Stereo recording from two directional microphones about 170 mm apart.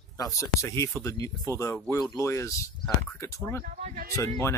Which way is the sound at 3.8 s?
50° right (ahead or behind).